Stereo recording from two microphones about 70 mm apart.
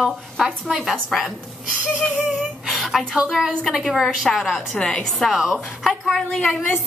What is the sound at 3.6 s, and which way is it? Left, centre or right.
A woman's voice, centre.